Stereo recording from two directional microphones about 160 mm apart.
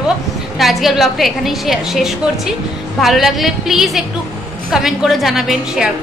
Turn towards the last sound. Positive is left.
turn(degrees=0)  # may be behind; listen again after turning